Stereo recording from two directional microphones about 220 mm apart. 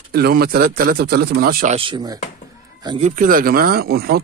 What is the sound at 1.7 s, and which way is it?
Speech, 20° right (ahead or behind).